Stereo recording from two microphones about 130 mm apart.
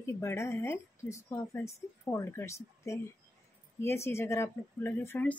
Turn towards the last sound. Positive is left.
turn(degrees=15)  # may be behind; listen again after turning